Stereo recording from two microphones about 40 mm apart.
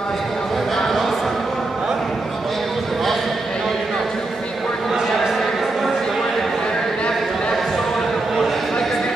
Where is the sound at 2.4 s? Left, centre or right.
Centre.